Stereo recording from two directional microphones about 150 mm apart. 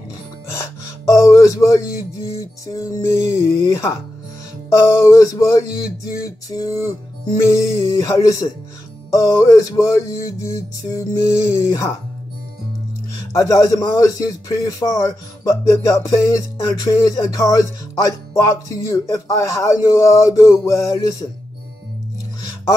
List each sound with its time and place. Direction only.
0.5 s speech: 20° left (ahead or behind)
13.3 s speech: 20° left (ahead or behind)